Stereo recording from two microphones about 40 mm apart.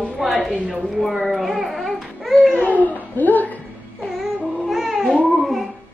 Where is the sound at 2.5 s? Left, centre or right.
Left.